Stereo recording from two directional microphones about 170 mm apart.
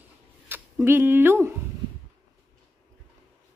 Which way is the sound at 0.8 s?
15° right (ahead or behind).